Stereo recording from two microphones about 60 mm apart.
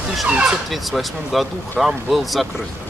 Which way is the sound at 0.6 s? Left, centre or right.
Centre.